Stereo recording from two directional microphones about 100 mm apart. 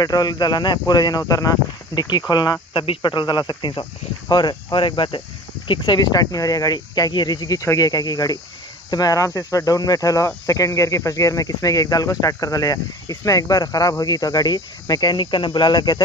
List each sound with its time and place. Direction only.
0.0 s speech: 40° left (ahead or behind)